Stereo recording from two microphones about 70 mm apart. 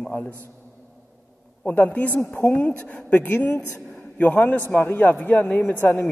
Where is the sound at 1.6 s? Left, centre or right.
Left.